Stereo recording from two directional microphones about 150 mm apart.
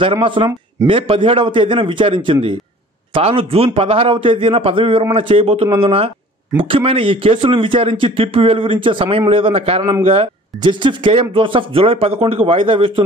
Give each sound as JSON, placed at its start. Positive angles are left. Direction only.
{"t": 0.0, "sound": "speech", "side_deg": -35}